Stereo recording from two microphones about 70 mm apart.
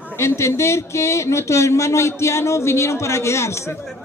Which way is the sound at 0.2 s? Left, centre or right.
Left.